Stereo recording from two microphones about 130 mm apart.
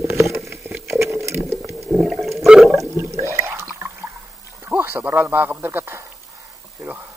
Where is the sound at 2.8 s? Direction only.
20° right (ahead or behind).